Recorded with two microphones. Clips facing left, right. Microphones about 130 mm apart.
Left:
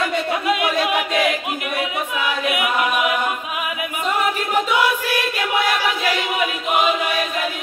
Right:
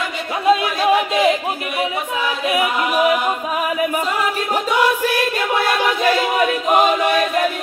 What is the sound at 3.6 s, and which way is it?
Chant, 40° right (ahead or behind).